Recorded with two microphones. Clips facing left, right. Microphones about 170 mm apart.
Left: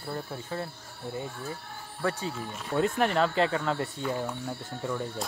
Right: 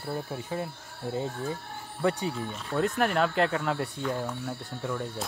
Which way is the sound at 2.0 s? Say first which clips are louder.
Right 3 dB; 20° right (ahead or behind).